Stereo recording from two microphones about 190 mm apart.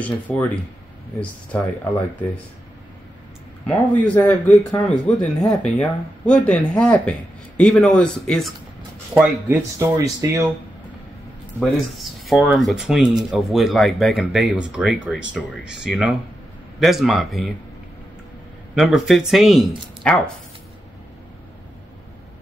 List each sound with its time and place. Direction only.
0.0 s a man's voice: 5° left (ahead or behind)
1.5 s a man's voice: 5° left (ahead or behind)
3.6 s a man's voice: 5° left (ahead or behind)
9.1 s speech: 10° right (ahead or behind)
12.0 s speech: centre (ahead or behind)
18.8 s speech: centre (ahead or behind)